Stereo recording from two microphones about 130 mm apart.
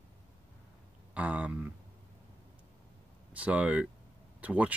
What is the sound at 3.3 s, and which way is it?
Speech, 10° right (ahead or behind).